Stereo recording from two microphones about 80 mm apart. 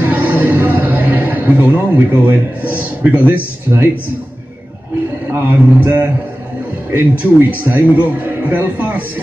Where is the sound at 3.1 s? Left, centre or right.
Centre.